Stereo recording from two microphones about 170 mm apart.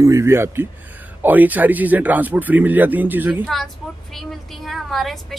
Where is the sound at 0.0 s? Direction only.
15° right (ahead or behind).